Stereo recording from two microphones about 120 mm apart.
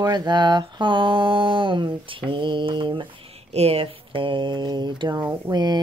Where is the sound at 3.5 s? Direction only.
55° right (ahead or behind); by 5.8 s 35° right (ahead or behind).